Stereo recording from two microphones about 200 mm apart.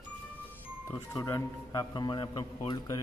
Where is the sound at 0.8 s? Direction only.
15° left (ahead or behind).